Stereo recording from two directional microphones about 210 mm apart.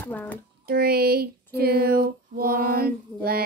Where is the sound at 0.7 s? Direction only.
45° right (ahead or behind).